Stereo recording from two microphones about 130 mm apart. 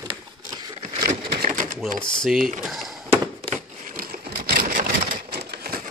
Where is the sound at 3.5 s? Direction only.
80° right.